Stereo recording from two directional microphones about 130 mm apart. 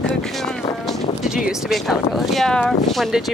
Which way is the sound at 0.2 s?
5° left (ahead or behind).